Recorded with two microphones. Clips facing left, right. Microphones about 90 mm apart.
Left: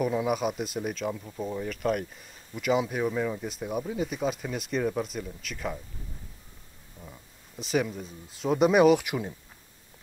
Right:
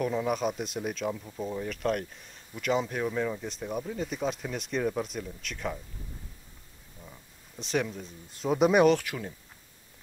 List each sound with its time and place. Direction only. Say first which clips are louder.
0.0 s speech: left 2 dB; 5° left (ahead or behind)
7.0 s speech: left 2 dB; 5° left (ahead or behind)
9.0 s speech: left 4 dB; 15° left (ahead or behind)